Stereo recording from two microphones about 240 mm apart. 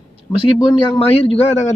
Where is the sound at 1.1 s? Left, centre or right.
Left.